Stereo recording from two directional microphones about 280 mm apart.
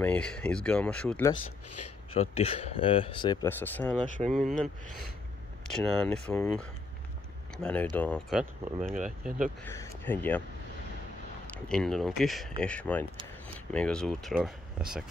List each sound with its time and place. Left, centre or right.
0.0 s speech: centre
1.3 s speech: left
2.1 s speech: left; by 4.6 s centre
5.8 s speech: centre
9.7 s speech: centre
11.5 s speech: centre